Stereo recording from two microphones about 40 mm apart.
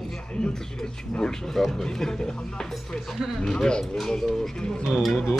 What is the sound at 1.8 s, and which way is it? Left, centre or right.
Speech, centre.